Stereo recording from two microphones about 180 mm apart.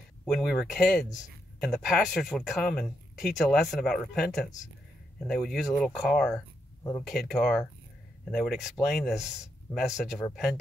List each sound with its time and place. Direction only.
0.2 s speech: centre (ahead or behind)
6.8 s speech: 15° left (ahead or behind)
7.1 s speech: centre (ahead or behind)